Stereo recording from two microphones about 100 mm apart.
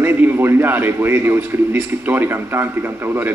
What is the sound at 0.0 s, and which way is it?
A man's voice, 20° right (ahead or behind).